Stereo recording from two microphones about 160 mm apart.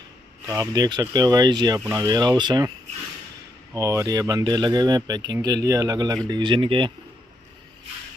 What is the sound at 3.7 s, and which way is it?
Speech, 20° right (ahead or behind).